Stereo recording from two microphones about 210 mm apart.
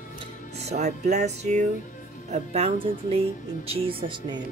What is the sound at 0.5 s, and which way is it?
Music, 30° right (ahead or behind).